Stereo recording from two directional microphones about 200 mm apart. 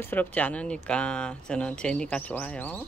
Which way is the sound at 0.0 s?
10° left (ahead or behind).